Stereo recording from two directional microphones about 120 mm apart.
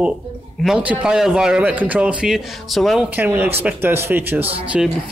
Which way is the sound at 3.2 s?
15° right (ahead or behind).